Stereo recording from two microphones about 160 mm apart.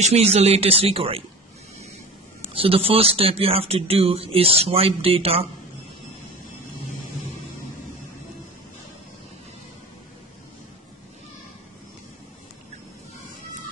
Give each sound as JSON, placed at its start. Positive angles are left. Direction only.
{"t": 0.0, "sound": "speech", "side_deg": -40}
{"t": 2.5, "sound": "speech", "side_deg": -35}